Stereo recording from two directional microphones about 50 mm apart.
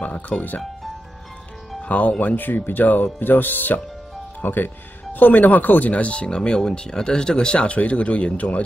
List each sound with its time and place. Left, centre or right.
0.0 s speech: left
1.8 s speech: left